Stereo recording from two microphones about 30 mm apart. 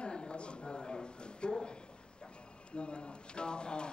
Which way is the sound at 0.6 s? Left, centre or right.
Left.